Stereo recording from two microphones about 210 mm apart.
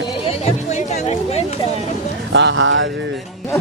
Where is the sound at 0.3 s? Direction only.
30° left (ahead or behind).